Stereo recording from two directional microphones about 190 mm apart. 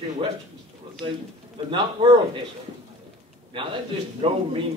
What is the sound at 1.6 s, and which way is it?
Speech, 25° right (ahead or behind).